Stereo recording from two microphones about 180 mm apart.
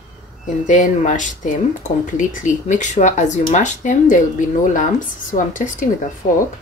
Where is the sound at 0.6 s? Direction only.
45° left (ahead or behind).